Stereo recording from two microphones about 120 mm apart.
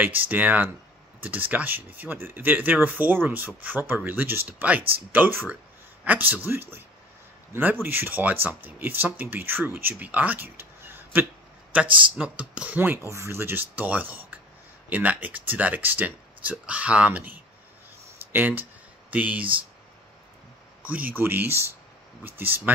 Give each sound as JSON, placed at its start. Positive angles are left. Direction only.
{"t": 0.0, "sound": "speech", "side_deg": -15}
{"t": 7.8, "sound": "speech", "side_deg": -15}
{"t": 18.3, "sound": "a sound", "side_deg": -15}
{"t": 20.8, "sound": "speech", "side_deg": -15}